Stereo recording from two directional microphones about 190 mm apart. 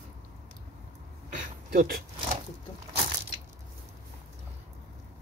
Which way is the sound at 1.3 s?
45° right (ahead or behind).